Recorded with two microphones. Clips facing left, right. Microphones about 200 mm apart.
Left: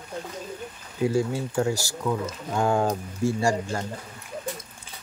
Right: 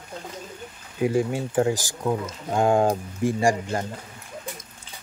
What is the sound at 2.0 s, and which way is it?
Speech, 30° right (ahead or behind).